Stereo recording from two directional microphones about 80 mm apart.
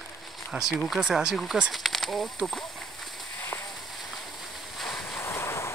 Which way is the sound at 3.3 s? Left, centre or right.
Left.